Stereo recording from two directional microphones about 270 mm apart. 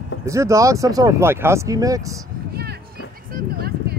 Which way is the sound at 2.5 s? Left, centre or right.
Right.